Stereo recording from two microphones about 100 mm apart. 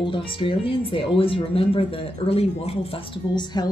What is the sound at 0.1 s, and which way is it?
Speech, 60° left (ahead or behind).